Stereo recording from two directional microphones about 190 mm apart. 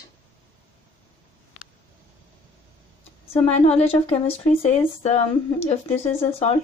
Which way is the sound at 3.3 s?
35° left (ahead or behind).